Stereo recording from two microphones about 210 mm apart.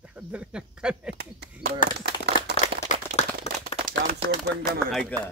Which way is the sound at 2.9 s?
35° left (ahead or behind).